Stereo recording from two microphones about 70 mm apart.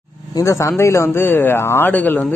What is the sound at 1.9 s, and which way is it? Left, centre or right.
Speech, left.